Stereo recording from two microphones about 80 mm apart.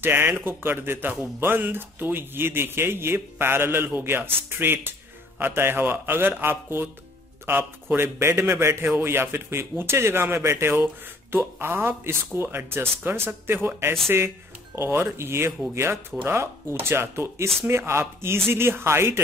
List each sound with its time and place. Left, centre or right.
0.0 s a man's voice: right